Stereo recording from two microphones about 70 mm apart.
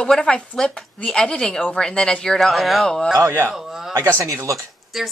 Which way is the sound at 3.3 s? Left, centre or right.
Right.